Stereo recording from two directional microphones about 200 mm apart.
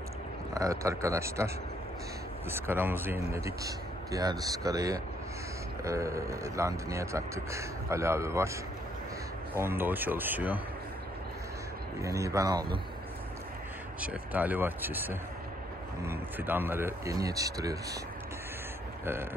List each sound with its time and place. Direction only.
0.6 s speech: 15° right (ahead or behind)
2.5 s speech: 10° right (ahead or behind)
9.6 s speech: 10° right (ahead or behind)
12.0 s speech: 15° right (ahead or behind)
14.0 s speech: 5° right (ahead or behind)